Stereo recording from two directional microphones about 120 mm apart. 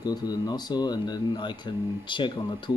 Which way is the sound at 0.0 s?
35° left (ahead or behind).